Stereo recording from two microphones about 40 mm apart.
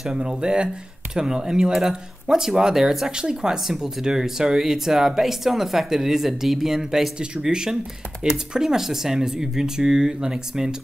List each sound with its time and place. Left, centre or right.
0.1 s speech: right
3.1 s speech: centre